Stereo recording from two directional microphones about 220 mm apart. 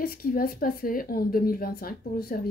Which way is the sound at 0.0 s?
40° left (ahead or behind).